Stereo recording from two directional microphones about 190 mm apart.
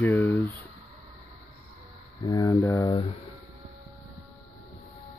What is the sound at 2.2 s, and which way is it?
Speech, 20° left (ahead or behind).